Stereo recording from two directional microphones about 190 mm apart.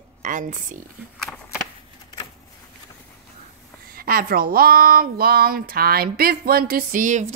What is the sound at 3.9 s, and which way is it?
A woman's voice, 50° right (ahead or behind).